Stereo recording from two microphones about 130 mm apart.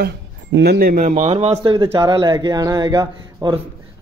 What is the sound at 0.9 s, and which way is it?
Speech, 85° right.